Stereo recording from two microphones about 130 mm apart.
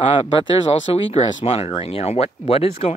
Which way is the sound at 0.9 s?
55° left (ahead or behind).